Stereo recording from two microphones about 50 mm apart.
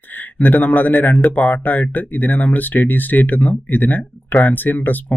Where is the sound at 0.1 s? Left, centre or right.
Left.